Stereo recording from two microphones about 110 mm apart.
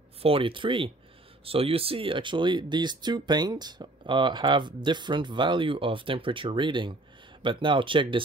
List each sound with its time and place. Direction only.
0.2 s speech: 55° right (ahead or behind)